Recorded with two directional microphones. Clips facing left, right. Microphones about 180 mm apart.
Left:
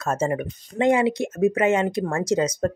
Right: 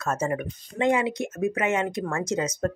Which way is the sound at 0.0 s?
30° left (ahead or behind).